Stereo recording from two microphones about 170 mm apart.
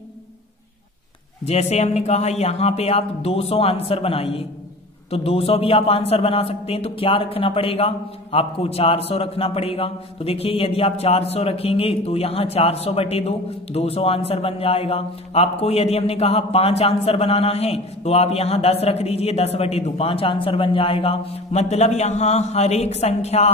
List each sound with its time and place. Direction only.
1.4 s speech: 40° left (ahead or behind)